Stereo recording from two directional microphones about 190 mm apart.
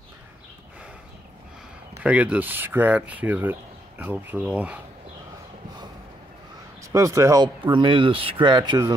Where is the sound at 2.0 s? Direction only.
5° right (ahead or behind).